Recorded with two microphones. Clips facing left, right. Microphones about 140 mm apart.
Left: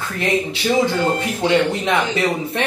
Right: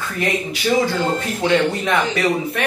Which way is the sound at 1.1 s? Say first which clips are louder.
Left 1 dB; 20° left (ahead or behind).